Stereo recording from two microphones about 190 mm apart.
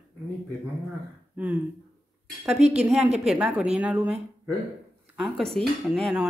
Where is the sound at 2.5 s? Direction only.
35° right (ahead or behind).